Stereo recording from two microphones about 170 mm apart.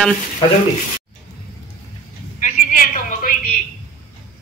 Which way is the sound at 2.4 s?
55° left (ahead or behind).